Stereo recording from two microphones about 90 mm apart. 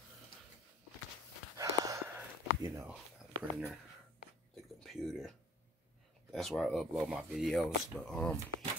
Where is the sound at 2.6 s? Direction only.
35° right (ahead or behind).